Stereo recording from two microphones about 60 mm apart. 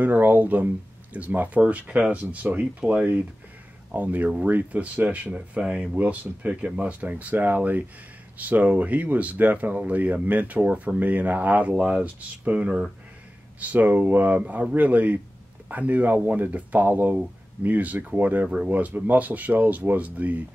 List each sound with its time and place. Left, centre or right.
0.0 s speech: right